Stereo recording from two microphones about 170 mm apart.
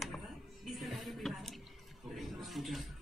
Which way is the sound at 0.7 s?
Centre (ahead or behind).